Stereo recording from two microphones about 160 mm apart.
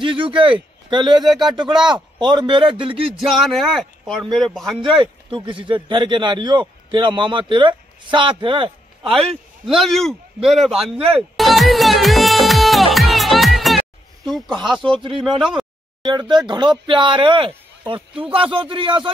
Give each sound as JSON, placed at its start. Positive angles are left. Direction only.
{"t": 0.0, "sound": "a man's voice", "side_deg": -30}
{"t": 1.8, "sound": "a man's voice", "side_deg": -5}
{"t": 2.1, "sound": "a man's voice", "side_deg": -30}
{"t": 3.2, "sound": "a man's voice", "side_deg": 0}
{"t": 4.8, "sound": "a man's voice", "side_deg": -30}
{"t": 9.2, "sound": "a man's voice", "side_deg": 0}
{"t": 11.3, "sound": "music", "side_deg": 0}
{"t": 14.2, "sound": "speech", "side_deg": 0}
{"t": 16.0, "sound": "a man's voice", "side_deg": -30}